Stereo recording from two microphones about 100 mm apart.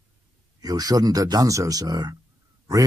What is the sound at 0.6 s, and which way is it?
Speech, 40° right (ahead or behind).